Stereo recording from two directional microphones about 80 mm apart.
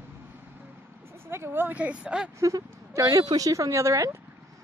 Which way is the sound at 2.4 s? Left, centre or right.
Right.